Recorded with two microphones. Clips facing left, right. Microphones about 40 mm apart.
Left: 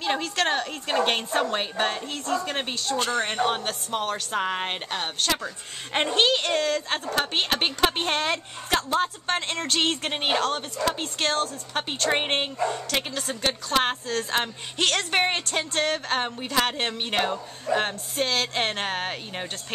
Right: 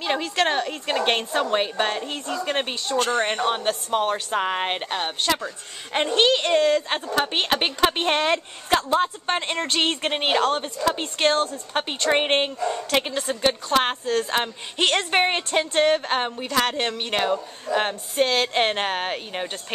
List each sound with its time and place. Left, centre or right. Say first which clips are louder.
0.0 s speech: right 2 dB; centre
16.4 s speech: right 2 dB; centre